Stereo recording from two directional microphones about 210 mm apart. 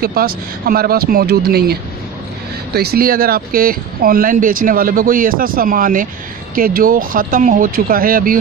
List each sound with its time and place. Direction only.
0.0 s speech: 45° right (ahead or behind)